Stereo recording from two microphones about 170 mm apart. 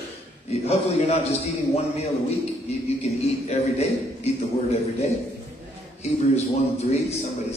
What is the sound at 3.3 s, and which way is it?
Speech, 40° left (ahead or behind).